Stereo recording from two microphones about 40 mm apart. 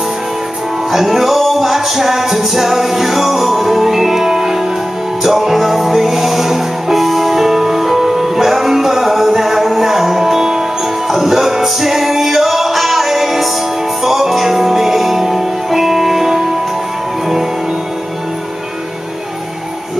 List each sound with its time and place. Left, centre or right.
0.9 s music: centre